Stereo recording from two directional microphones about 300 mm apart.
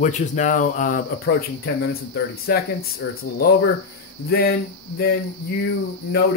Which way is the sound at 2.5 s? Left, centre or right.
Left.